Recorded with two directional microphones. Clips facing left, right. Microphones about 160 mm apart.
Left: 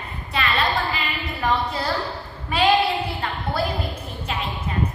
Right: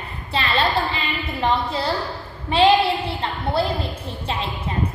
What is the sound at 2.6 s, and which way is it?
Speech, 30° right (ahead or behind).